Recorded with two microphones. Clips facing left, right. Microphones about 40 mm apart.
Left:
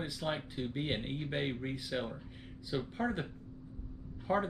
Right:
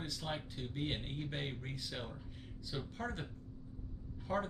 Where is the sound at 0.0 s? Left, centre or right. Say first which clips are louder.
Left 5 dB; centre.